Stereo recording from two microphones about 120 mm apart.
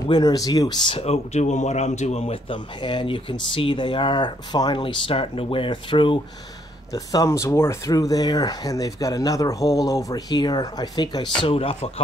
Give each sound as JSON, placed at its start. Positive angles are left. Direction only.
{"t": 0.1, "sound": "speech", "side_deg": 35}
{"t": 0.9, "sound": "speech", "side_deg": 60}
{"t": 2.5, "sound": "speech", "side_deg": 40}
{"t": 6.9, "sound": "speech", "side_deg": 30}
{"t": 11.4, "sound": "speech", "side_deg": 50}